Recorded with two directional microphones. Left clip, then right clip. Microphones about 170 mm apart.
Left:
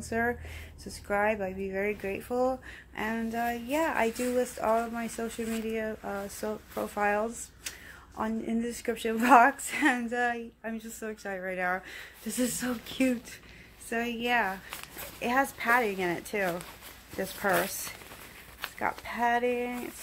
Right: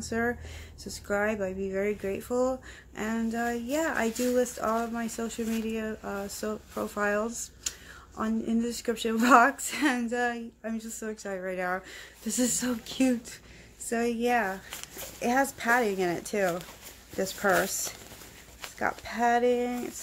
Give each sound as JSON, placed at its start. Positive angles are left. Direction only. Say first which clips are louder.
{"t": 0.1, "sound": "a woman's voice", "louder": "even", "side_deg": -20}
{"t": 18.8, "sound": "speech", "louder": "right 2 dB", "side_deg": -35}